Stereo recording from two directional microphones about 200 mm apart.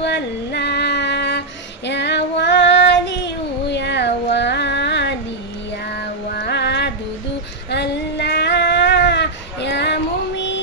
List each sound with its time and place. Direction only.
0.0 s music: 60° left (ahead or behind)
1.9 s female singing: 60° left (ahead or behind)
5.9 s a sound: 55° left (ahead or behind)
7.7 s female singing: 55° left (ahead or behind)